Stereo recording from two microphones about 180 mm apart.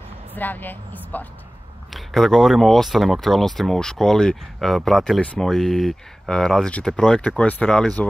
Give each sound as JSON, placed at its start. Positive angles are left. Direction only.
{"t": 0.3, "sound": "a woman's voice", "side_deg": 10}